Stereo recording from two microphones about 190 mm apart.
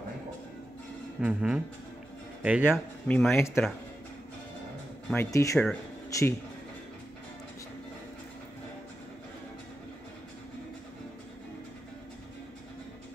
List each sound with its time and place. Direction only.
1.2 s speech: 5° right (ahead or behind)
3.1 s speech: 10° left (ahead or behind)
5.1 s speech: 15° left (ahead or behind)
6.0 s a sound: 15° left (ahead or behind)